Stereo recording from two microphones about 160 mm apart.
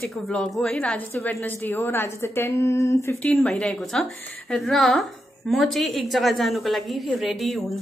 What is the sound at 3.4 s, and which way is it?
Speech, 5° left (ahead or behind).